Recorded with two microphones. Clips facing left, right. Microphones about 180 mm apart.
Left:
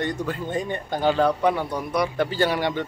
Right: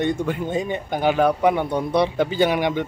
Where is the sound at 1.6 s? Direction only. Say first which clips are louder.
Right 5 dB; 25° right (ahead or behind).